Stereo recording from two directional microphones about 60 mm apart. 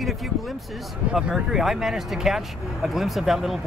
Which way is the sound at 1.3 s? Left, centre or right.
Centre.